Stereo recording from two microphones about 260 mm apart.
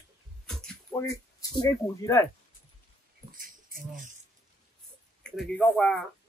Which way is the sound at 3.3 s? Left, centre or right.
Right.